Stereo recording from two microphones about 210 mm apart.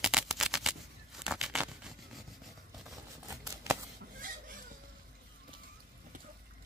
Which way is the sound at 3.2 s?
15° right (ahead or behind).